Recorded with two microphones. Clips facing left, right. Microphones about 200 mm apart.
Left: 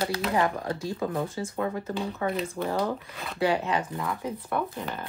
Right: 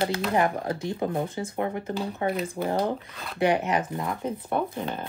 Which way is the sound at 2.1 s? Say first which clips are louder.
Right 3 dB; 30° right (ahead or behind).